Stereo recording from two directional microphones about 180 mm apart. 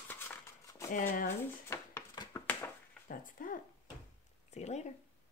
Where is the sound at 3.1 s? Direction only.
50° left (ahead or behind).